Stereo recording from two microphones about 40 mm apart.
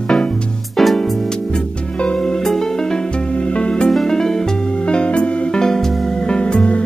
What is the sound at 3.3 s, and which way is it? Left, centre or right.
Music, left.